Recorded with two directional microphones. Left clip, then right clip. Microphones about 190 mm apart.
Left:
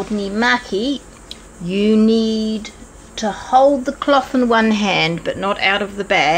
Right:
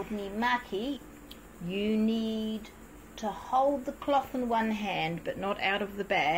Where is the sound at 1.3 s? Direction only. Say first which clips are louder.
Left 13 dB; 30° left (ahead or behind).